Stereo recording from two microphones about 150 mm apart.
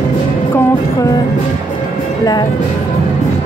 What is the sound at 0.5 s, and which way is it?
Music, 20° left (ahead or behind).